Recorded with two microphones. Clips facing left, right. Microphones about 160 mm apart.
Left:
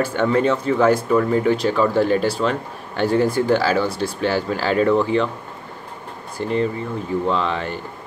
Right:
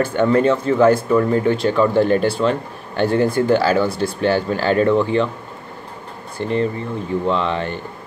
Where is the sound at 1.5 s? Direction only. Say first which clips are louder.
Right 1 dB; centre (ahead or behind).